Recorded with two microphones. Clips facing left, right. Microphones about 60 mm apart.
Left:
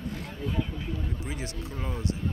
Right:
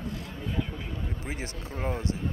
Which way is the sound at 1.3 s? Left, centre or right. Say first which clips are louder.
Even; right.